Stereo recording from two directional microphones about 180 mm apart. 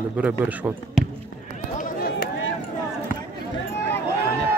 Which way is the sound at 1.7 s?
55° left (ahead or behind).